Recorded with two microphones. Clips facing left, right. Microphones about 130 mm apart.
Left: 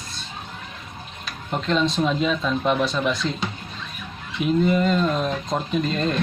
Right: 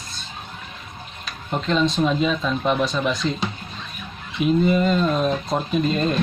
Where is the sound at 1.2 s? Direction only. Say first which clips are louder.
Right 1 dB; centre (ahead or behind).